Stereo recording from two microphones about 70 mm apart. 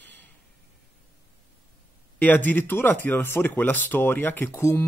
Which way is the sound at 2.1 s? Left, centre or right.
Left.